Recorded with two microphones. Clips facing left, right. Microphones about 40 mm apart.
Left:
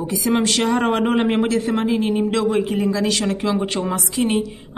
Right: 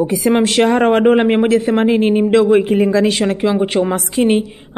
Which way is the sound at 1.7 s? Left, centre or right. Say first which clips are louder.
Right 6 dB; right.